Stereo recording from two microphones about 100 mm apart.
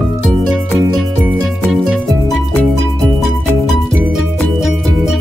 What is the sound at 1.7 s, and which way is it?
Music, centre (ahead or behind).